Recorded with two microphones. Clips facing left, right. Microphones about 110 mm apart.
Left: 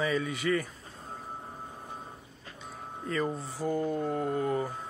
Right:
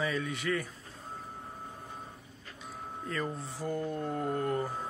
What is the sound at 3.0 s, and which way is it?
Speech, centre (ahead or behind).